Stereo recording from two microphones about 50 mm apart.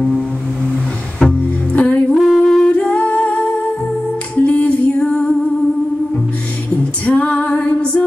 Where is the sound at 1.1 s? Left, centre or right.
Left.